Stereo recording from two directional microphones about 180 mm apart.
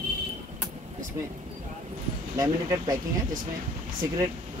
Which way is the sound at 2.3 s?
20° right (ahead or behind).